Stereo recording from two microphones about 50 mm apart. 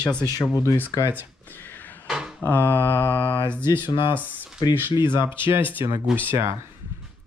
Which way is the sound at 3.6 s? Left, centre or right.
Right.